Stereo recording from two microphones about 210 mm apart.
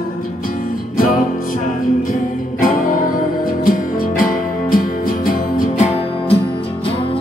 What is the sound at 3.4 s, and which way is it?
Music, 40° left (ahead or behind).